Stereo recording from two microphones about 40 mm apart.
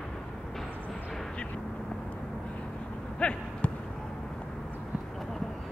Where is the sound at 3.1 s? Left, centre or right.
Left.